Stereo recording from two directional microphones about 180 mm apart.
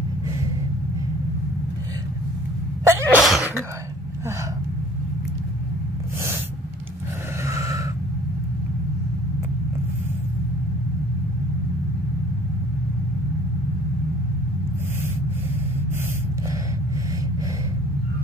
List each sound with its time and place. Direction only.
2.8 s sneeze: 15° right (ahead or behind)
3.2 s sneeze: centre (ahead or behind)
7.4 s a sound: 15° right (ahead or behind)